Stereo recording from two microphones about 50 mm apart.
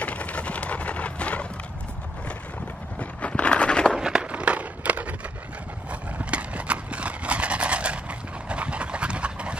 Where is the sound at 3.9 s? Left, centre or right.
Centre.